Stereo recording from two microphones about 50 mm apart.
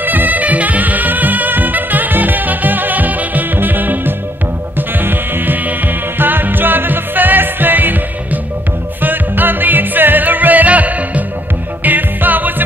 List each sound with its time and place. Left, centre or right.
0.0 s music: right